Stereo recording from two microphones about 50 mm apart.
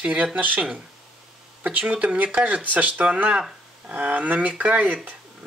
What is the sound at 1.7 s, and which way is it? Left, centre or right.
Speech, right.